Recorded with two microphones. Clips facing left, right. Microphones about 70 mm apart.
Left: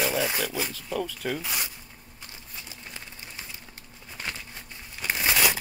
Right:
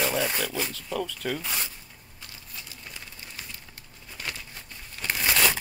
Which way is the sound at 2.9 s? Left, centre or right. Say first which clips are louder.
Left 1 dB; left.